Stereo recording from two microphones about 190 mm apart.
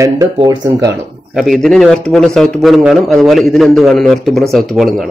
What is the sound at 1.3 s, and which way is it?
Speech, centre (ahead or behind).